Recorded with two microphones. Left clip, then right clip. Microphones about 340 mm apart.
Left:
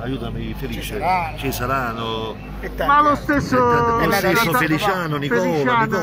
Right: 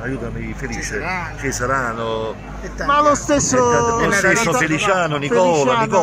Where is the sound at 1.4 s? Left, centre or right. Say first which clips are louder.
Right 2 dB; centre.